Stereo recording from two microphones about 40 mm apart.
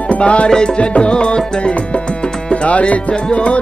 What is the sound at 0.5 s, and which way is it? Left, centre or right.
Music, centre.